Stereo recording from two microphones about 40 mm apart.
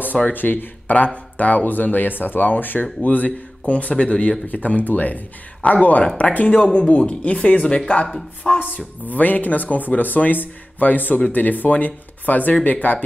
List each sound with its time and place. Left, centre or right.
0.3 s speech: left
0.9 s speech: left
4.5 s speech: left
8.5 s speech: left